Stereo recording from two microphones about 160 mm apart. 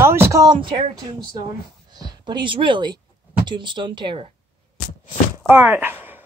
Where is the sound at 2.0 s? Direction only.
25° right (ahead or behind).